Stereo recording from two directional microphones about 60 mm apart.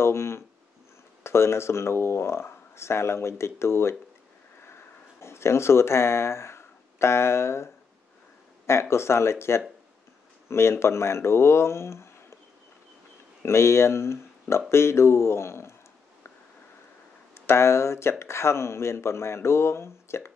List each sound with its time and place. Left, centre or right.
0.0 s a sound: left
1.2 s speech: left
5.2 s speech: left
13.4 s speech: left
17.3 s speech: left